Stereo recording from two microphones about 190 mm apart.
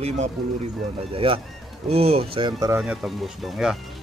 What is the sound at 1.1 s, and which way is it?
Speech, 30° right (ahead or behind).